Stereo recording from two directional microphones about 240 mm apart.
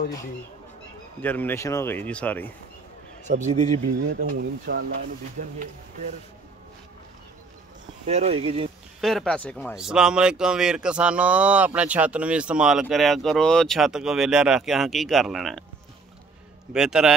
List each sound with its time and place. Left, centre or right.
1.2 s speech: centre
3.3 s speech: right
4.1 s speech: right
8.1 s speech: right
9.0 s speech: centre
16.7 s speech: centre